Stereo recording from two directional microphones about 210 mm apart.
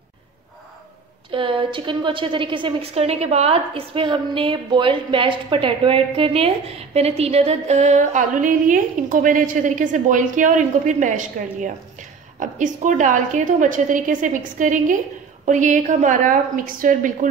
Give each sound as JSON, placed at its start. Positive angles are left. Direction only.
{"t": 1.3, "sound": "a woman's voice", "side_deg": -25}